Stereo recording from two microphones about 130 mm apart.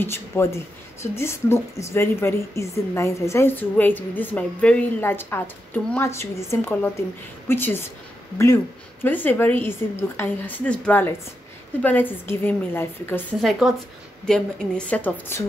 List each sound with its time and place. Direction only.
0.0 s a woman's voice: 20° left (ahead or behind)
9.0 s a woman's voice: 15° left (ahead or behind)
13.4 s a woman's voice: centre (ahead or behind)